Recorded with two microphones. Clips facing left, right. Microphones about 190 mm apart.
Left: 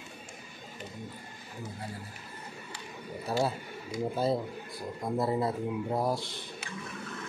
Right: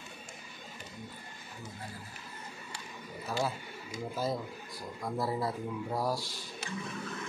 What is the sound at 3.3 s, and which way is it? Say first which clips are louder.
Speech: left 4 dB; 30° left (ahead or behind).